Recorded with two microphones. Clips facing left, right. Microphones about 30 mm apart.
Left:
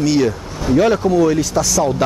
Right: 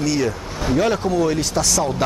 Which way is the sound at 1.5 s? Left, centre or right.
Centre.